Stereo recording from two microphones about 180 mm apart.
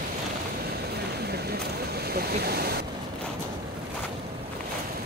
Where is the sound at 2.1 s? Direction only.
60° right (ahead or behind).